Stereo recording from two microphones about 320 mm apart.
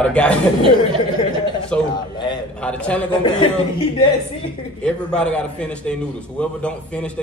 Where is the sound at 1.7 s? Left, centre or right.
Centre.